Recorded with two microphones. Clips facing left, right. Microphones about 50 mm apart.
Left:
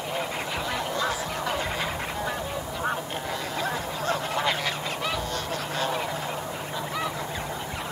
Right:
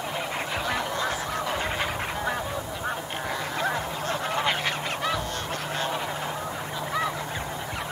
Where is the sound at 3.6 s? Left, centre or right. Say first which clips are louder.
Right 2 dB; right.